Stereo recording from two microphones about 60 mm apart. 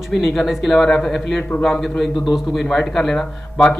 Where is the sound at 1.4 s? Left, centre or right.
Left.